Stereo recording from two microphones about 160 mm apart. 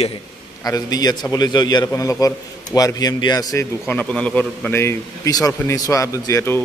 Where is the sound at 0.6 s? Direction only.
25° left (ahead or behind).